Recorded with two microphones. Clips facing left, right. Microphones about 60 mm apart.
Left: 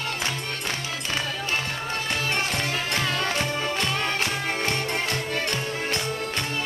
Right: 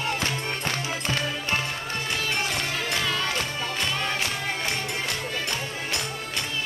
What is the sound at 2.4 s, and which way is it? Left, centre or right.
Music, left.